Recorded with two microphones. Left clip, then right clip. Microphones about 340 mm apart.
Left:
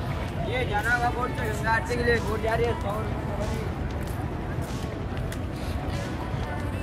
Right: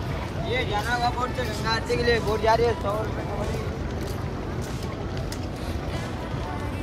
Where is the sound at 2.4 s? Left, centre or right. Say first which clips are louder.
Right 9 dB; right.